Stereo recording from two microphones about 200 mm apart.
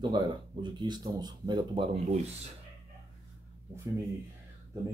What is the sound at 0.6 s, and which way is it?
Speech, 20° right (ahead or behind).